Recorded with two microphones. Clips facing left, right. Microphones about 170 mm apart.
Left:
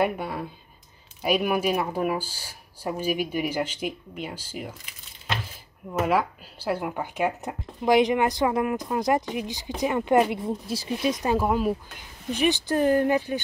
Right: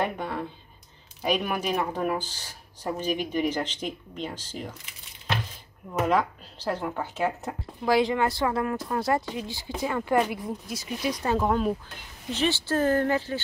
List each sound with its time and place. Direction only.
0.0 s speech: 10° left (ahead or behind)
5.9 s speech: 5° left (ahead or behind)
11.3 s speech: 5° left (ahead or behind)